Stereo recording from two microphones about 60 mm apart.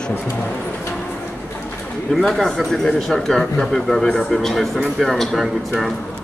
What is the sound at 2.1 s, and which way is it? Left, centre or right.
A man's voice, centre.